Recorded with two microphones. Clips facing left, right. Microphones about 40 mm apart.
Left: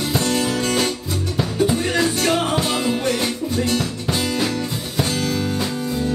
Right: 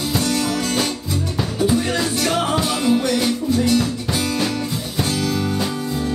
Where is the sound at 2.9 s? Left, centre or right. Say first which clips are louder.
Right 3 dB; left.